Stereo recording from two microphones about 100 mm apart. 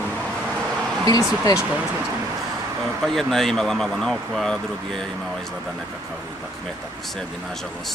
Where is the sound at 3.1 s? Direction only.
5° left (ahead or behind).